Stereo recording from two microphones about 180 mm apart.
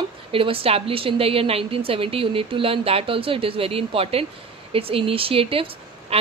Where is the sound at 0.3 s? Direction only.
30° right (ahead or behind).